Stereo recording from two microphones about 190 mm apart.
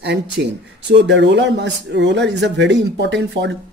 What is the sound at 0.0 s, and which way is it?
Speech, 65° right (ahead or behind).